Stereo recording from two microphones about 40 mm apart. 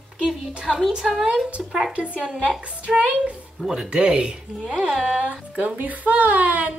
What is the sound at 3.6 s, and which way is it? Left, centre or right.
Speech, centre.